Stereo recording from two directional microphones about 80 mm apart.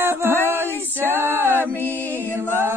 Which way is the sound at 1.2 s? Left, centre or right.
Right.